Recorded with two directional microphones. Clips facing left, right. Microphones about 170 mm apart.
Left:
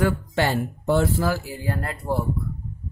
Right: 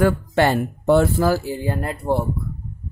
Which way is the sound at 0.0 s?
60° right (ahead or behind).